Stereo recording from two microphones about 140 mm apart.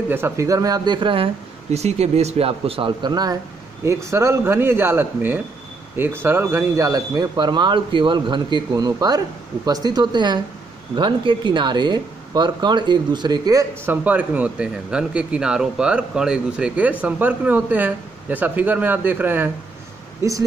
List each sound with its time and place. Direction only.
0.1 s speech: 20° right (ahead or behind)
14.0 s speech: 10° right (ahead or behind)